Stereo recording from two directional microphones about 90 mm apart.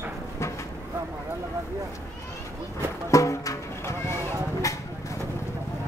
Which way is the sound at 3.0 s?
35° left (ahead or behind).